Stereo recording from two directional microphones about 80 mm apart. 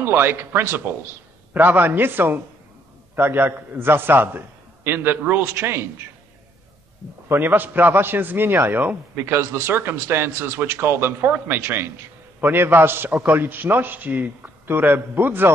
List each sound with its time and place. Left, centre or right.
0.0 s a man's voice: right
7.2 s a man's voice: right